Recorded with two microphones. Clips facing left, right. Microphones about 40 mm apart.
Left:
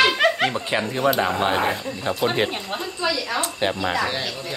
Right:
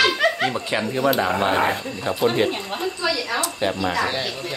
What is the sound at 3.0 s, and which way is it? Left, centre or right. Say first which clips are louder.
Speech: left 1 dB; centre.